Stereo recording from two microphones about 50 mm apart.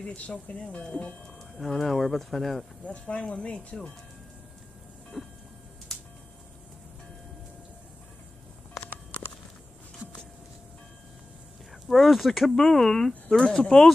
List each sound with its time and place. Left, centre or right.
0.0 s speech: left
1.6 s speech: centre
2.8 s speech: left
5.2 s vehicle: centre
5.9 s a sound: centre
8.7 s a sound: left
11.9 s speech: centre
12.4 s speech: centre